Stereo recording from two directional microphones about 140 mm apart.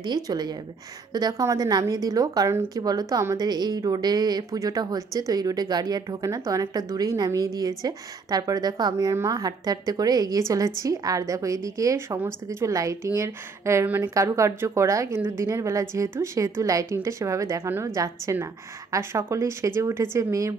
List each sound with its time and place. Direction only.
0.0 s a woman's voice: 30° right (ahead or behind)